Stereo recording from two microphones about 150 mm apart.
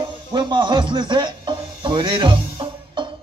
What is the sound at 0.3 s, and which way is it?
Music, 30° right (ahead or behind).